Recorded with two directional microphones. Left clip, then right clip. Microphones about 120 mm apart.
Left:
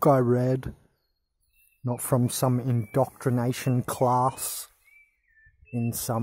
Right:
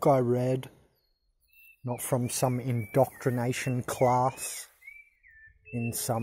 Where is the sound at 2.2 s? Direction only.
20° left (ahead or behind).